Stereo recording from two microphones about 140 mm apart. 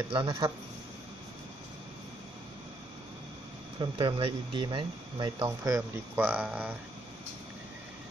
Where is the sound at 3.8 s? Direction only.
35° right (ahead or behind).